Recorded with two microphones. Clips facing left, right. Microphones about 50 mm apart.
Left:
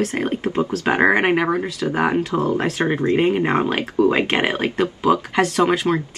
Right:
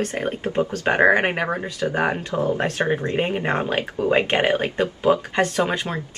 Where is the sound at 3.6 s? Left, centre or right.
Left.